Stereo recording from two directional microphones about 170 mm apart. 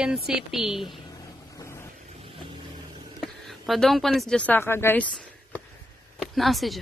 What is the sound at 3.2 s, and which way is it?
Speech, centre (ahead or behind).